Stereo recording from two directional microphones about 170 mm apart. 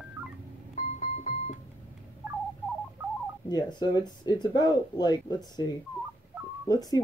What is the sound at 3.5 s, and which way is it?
Speech, 25° left (ahead or behind).